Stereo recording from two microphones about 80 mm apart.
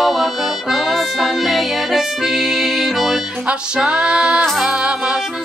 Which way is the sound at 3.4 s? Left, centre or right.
Centre.